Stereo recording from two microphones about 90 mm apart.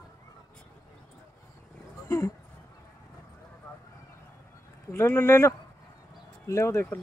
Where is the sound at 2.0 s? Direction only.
30° left (ahead or behind).